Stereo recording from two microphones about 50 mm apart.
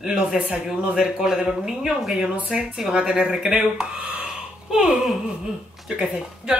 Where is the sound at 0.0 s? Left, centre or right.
Centre.